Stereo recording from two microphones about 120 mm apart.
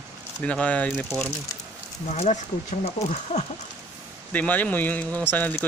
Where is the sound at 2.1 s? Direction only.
75° left (ahead or behind).